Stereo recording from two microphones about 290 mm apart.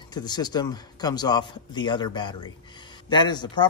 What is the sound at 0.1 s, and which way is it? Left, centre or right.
A man's voice, centre.